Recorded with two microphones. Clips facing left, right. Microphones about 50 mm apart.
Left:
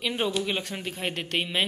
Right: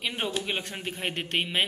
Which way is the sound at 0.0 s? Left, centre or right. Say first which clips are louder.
Left 3 dB; centre.